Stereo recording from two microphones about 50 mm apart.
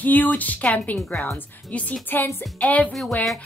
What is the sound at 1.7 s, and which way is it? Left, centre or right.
Speech, left.